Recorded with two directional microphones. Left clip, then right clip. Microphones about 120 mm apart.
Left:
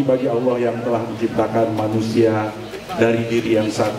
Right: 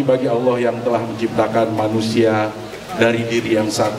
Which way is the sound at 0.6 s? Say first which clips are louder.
Right 2 dB; 45° right (ahead or behind).